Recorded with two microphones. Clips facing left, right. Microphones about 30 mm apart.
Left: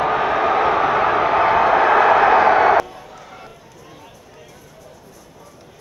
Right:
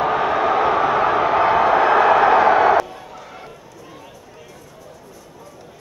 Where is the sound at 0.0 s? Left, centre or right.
Left.